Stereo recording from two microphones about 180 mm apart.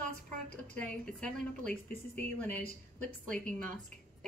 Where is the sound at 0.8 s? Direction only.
5° left (ahead or behind).